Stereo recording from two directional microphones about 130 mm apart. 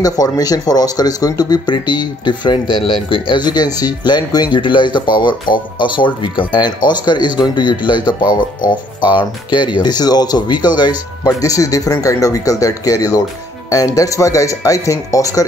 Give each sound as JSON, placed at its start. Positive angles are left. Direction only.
{"t": 0.0, "sound": "speech", "side_deg": 30}